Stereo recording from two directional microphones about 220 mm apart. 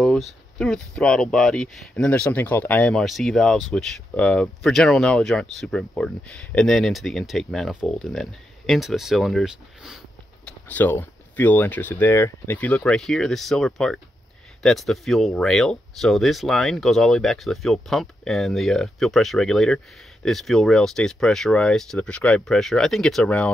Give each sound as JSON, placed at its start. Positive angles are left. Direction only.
{"t": 0.0, "sound": "speech", "side_deg": 0}